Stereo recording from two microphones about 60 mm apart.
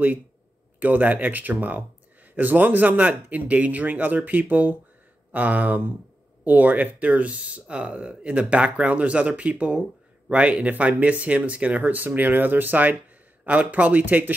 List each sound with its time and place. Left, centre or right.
0.7 s speech: right